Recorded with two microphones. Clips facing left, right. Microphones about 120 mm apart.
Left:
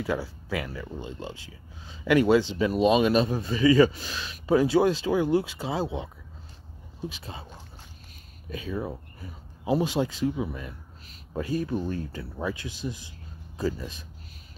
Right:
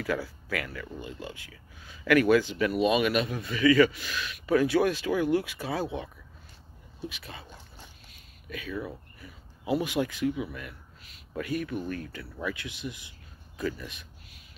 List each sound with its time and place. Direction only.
0.0 s speech: 25° left (ahead or behind)
7.1 s speech: 30° left (ahead or behind)
8.5 s speech: 30° left (ahead or behind)